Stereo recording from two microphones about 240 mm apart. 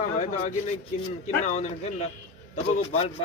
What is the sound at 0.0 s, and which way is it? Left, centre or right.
Speech, left.